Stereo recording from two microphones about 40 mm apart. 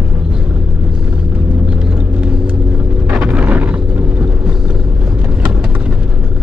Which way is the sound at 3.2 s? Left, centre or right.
Right.